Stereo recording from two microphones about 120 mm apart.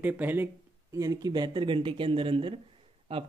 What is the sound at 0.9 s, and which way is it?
Speech, 30° right (ahead or behind).